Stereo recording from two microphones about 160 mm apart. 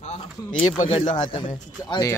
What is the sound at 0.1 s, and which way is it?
Speech, 45° left (ahead or behind).